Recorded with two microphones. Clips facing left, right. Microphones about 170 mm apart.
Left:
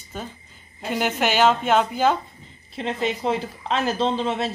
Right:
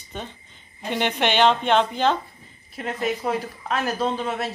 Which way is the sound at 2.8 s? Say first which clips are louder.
Left 1 dB; 25° left (ahead or behind).